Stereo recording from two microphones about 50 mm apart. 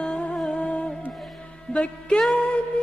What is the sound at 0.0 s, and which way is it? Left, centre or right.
Music, centre.